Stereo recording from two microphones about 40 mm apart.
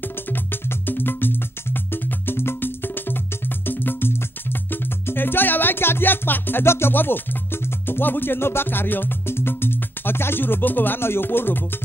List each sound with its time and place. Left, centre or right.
0.3 s music: left
6.6 s music: left
6.9 s music: left